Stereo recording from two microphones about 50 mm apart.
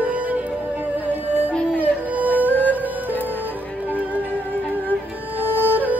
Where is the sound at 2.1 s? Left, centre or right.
Right.